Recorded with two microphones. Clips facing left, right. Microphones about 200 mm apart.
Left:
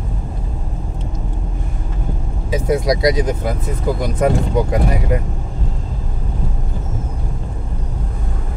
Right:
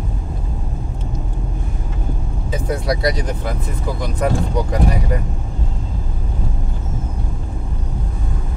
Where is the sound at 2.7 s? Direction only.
20° left (ahead or behind).